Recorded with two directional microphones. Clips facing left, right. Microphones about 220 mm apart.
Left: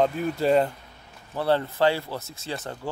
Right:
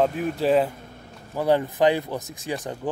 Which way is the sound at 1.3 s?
15° right (ahead or behind).